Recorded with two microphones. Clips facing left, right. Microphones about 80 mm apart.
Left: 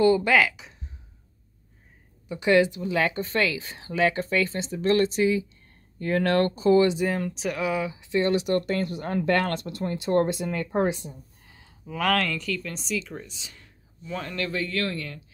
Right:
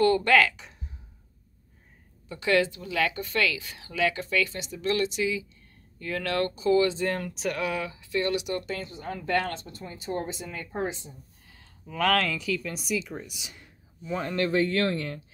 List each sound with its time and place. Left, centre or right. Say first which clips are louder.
0.0 s speech: left 1 dB; centre
2.2 s speech: left 4 dB; centre; by 6.9 s left
6.9 s speech: left 3 dB; centre
7.2 s speech: left 2 dB; centre
7.9 s speech: left 4 dB; left
8.5 s speech: left 7 dB; left
11.4 s a sound: left 2 dB; centre
11.9 s speech: even; centre
14.2 s speech: right 6 dB; right